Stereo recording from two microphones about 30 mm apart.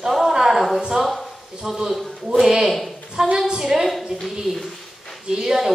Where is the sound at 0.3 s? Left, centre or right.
Centre.